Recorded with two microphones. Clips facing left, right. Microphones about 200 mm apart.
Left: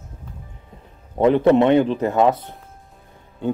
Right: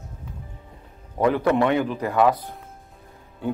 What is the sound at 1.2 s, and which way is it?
Speech, 25° left (ahead or behind).